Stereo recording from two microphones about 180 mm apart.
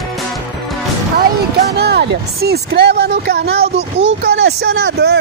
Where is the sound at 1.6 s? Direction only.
65° right (ahead or behind).